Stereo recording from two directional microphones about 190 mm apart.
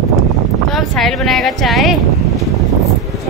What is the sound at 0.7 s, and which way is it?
Speech, centre (ahead or behind).